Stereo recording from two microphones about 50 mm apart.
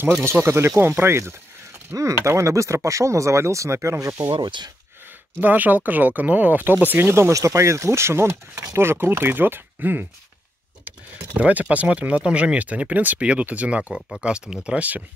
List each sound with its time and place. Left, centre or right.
0.2 s speech: right
2.0 s speech: right
5.4 s speech: right
7.2 s speech: right
10.9 s speech: right